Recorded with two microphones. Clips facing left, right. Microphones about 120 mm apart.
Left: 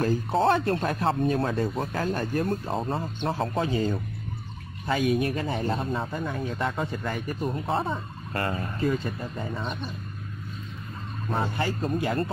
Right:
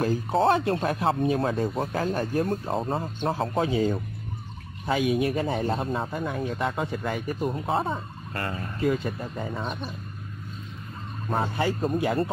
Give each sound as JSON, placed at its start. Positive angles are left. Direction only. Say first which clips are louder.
{"t": 0.0, "sound": "a man's voice", "louder": "even", "side_deg": -5}
{"t": 8.3, "sound": "speech", "louder": "left 3 dB", "side_deg": 35}
{"t": 9.0, "sound": "a man's voice", "louder": "right 1 dB", "side_deg": -10}
{"t": 11.6, "sound": "a man's voice", "louder": "right 2 dB", "side_deg": -5}